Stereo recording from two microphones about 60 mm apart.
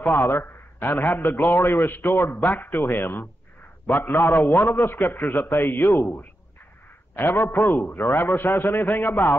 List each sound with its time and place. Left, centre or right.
0.0 s a man's voice: left